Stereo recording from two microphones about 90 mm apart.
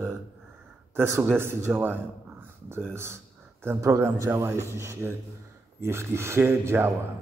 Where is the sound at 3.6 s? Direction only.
30° right (ahead or behind).